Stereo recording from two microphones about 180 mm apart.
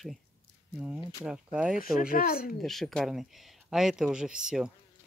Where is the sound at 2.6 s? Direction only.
Centre (ahead or behind).